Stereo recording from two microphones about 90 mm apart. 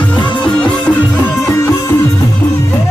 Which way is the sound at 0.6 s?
15° left (ahead or behind).